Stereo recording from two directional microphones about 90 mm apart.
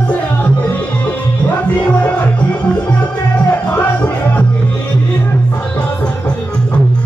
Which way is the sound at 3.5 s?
20° left (ahead or behind).